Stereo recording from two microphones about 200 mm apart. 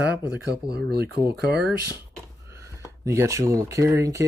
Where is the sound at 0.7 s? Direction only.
55° right (ahead or behind).